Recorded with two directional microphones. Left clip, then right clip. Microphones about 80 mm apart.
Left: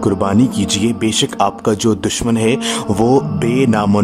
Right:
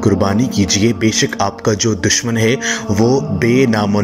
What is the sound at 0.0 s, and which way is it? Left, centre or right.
Speech, centre.